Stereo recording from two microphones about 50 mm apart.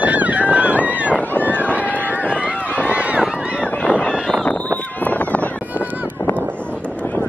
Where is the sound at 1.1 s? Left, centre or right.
Left.